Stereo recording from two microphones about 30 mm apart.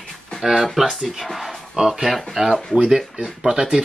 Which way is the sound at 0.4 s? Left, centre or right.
Centre.